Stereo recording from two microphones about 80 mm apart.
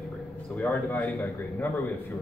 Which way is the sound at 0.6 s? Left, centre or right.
Left.